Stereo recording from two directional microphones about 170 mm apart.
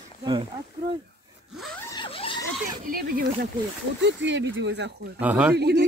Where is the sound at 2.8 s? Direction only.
55° right (ahead or behind).